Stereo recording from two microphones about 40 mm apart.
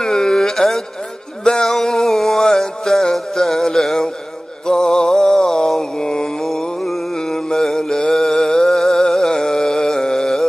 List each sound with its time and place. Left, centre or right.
0.0 s a sound: centre
4.6 s mantra: centre
8.1 s music: centre